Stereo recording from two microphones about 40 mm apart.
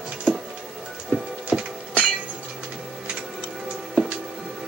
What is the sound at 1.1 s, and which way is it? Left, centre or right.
Music, right.